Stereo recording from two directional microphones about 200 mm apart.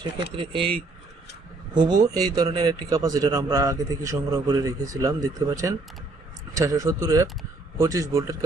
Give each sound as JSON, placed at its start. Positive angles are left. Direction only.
{"t": 0.0, "sound": "speech", "side_deg": -25}